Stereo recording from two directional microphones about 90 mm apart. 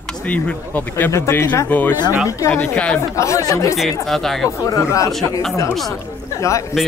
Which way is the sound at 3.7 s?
Centre (ahead or behind).